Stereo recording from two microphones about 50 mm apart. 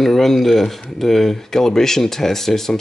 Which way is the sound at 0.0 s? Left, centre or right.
Centre.